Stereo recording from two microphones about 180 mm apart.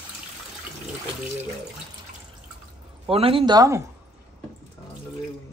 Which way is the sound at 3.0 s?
30° right (ahead or behind).